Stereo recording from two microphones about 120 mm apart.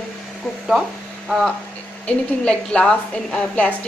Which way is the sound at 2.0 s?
10° left (ahead or behind).